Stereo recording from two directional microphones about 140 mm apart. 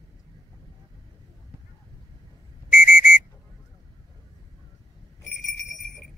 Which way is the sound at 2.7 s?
70° left (ahead or behind).